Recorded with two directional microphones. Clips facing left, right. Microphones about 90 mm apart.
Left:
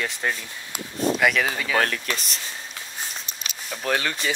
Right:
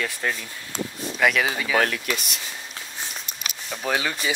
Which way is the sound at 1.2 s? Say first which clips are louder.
Right 5 dB; centre (ahead or behind).